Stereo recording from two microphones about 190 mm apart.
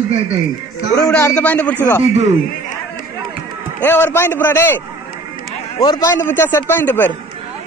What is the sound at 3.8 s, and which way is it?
Speech, 10° left (ahead or behind).